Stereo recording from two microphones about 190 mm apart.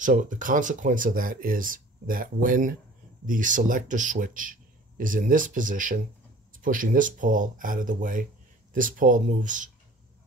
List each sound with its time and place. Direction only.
0.0 s speech: 45° right (ahead or behind)